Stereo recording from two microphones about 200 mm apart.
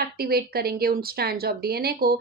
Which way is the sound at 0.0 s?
50° right (ahead or behind).